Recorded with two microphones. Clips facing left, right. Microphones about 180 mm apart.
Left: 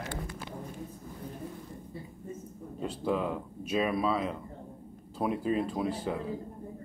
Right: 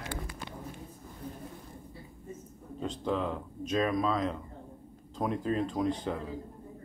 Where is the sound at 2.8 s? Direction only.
10° left (ahead or behind).